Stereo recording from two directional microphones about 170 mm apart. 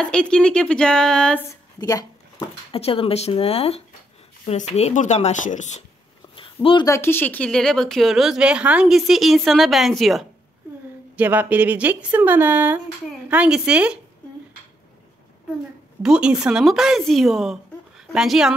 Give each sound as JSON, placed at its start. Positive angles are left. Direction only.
{"t": 0.0, "sound": "speech", "side_deg": 5}
{"t": 1.5, "sound": "a sound", "side_deg": 20}
{"t": 2.7, "sound": "speech", "side_deg": 35}
{"t": 6.3, "sound": "a sound", "side_deg": 30}
{"t": 6.9, "sound": "speech", "side_deg": 15}
{"t": 16.0, "sound": "speech", "side_deg": -5}